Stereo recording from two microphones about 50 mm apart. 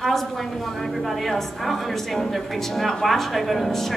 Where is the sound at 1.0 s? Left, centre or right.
Centre.